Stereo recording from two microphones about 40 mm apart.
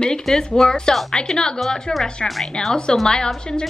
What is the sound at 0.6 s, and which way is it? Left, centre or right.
A woman's voice, centre.